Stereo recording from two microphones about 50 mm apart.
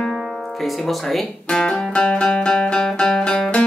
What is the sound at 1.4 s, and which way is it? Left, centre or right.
Music, centre.